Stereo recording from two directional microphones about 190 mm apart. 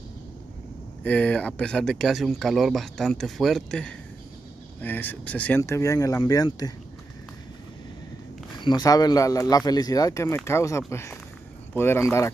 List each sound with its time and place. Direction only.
1.0 s a man's voice: 5° left (ahead or behind)
8.5 s a man's voice: 25° left (ahead or behind)